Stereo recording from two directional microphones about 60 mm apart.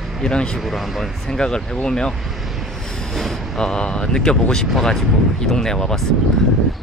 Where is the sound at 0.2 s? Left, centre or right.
Centre.